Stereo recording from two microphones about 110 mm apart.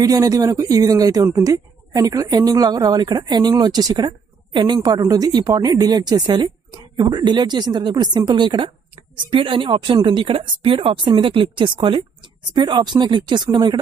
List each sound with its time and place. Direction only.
0.0 s a woman's voice: 35° right (ahead or behind)